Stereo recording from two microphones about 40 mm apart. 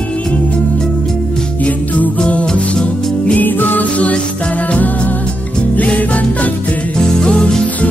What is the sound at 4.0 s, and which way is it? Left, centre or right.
Music, left.